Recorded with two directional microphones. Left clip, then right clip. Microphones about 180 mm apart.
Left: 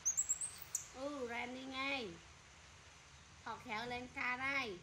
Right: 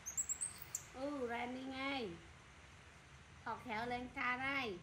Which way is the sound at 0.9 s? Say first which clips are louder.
Right 2 dB; 15° left (ahead or behind).